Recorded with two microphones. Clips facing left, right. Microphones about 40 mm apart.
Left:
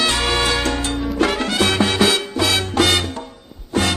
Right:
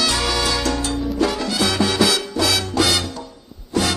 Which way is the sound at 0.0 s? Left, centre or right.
Left.